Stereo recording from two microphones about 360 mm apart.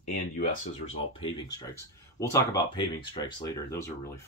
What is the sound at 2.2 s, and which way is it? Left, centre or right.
Speech, centre.